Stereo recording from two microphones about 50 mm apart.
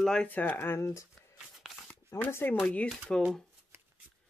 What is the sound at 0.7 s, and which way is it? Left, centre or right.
Speech, left.